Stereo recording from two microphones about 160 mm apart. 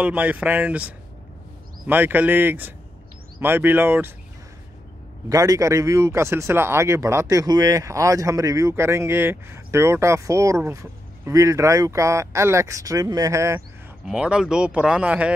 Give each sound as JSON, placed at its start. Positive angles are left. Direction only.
{"t": 0.0, "sound": "speech", "side_deg": -10}
{"t": 5.3, "sound": "speech", "side_deg": -20}
{"t": 14.0, "sound": "speech", "side_deg": -5}